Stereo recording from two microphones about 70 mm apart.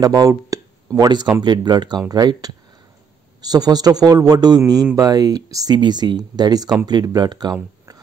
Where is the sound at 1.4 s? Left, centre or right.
Right.